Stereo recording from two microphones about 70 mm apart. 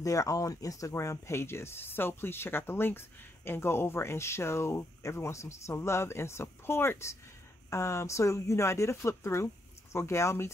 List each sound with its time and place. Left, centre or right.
0.0 s speech: left